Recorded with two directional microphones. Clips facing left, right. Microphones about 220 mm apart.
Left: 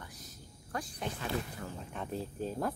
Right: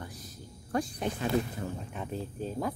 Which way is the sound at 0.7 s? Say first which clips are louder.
Right 8 dB; 20° right (ahead or behind).